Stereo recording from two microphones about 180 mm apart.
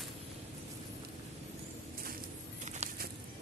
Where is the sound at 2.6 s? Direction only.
40° right (ahead or behind).